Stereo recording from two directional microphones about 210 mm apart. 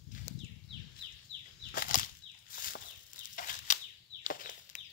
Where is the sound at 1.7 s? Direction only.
40° left (ahead or behind).